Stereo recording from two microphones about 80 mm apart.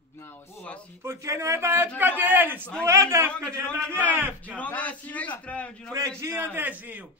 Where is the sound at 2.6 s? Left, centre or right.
Centre.